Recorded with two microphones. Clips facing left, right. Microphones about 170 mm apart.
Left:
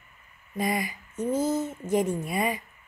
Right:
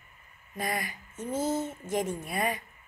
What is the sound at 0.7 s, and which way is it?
Speech, centre (ahead or behind).